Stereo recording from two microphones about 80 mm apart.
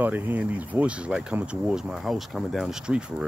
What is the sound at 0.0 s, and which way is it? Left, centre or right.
Speech, right.